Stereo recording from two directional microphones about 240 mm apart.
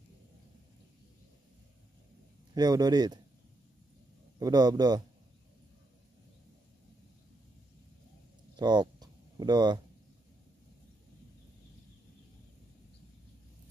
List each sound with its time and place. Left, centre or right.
2.5 s a man's voice: centre
4.4 s a man's voice: centre
8.5 s a sound: centre